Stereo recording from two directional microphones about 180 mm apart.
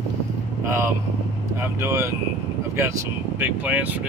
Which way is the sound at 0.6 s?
15° right (ahead or behind).